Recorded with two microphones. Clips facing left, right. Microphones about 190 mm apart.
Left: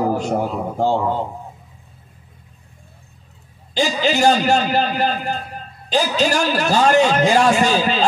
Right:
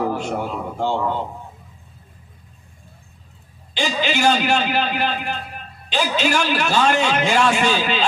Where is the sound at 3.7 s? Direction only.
40° left (ahead or behind).